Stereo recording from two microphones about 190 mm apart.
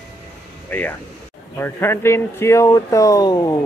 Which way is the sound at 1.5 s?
10° left (ahead or behind).